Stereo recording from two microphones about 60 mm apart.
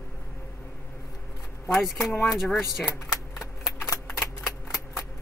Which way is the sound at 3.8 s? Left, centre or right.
Left.